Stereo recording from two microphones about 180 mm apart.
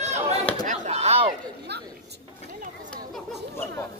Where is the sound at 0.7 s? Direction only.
35° right (ahead or behind).